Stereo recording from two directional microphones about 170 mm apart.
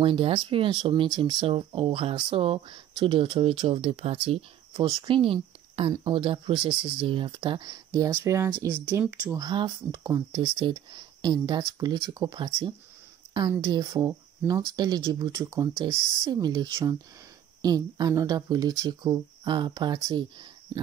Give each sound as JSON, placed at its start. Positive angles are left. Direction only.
{"t": 0.0, "sound": "speech", "side_deg": -30}
{"t": 9.4, "sound": "speech", "side_deg": -25}